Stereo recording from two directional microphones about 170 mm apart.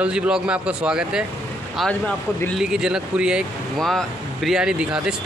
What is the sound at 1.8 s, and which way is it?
Speech, 5° left (ahead or behind).